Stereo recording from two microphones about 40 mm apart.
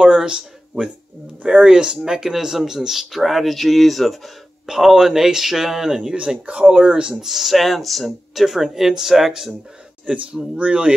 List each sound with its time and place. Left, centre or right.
0.0 s speech: right; by 4.3 s centre
4.6 s speech: centre; by 7.1 s right
7.1 s speech: centre
10.1 s speech: right